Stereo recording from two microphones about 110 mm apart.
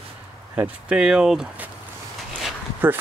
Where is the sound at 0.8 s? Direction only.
10° right (ahead or behind).